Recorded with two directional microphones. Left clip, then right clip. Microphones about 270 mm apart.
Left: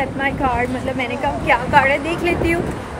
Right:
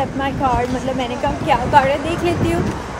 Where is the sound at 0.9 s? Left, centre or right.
Centre.